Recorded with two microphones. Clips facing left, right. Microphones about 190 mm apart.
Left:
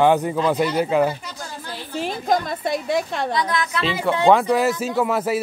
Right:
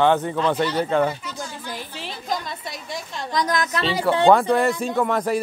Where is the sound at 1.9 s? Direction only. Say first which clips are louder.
Left 9 dB; 50° left (ahead or behind).